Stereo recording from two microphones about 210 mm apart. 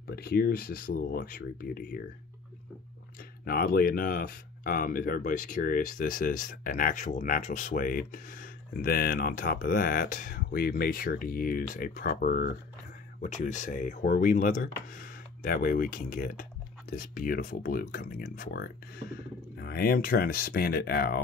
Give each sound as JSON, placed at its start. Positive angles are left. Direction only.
{"t": 0.0, "sound": "speech", "side_deg": 45}
{"t": 3.4, "sound": "speech", "side_deg": 45}